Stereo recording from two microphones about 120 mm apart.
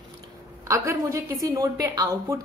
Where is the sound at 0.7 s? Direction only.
25° right (ahead or behind).